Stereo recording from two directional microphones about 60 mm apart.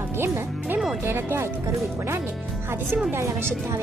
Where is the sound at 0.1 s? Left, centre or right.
Right.